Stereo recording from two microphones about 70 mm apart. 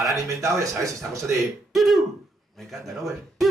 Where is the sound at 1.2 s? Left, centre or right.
Centre.